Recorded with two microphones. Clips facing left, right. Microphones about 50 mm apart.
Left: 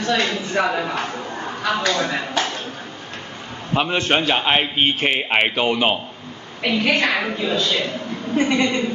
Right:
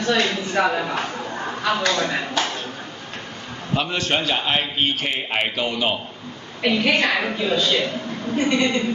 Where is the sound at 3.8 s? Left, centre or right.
Left.